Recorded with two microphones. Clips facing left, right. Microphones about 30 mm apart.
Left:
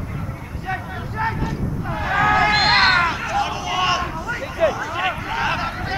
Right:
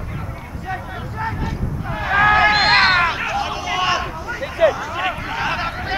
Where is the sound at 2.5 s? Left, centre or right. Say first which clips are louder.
Right 1 dB; centre.